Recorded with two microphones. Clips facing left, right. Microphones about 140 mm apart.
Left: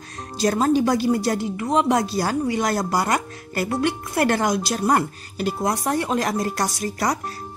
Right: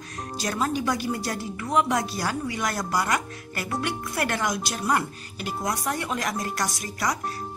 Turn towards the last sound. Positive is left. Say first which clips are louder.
# left 5 dB
turn(degrees=35)  # may be behind; listen again after turning